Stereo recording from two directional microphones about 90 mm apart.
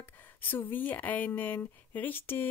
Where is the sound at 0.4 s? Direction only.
20° left (ahead or behind).